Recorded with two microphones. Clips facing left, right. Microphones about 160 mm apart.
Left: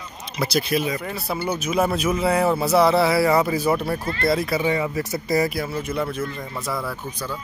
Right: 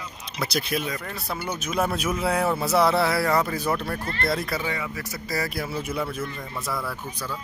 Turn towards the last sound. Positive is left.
turn(degrees=0)  # may be behind; listen again after turning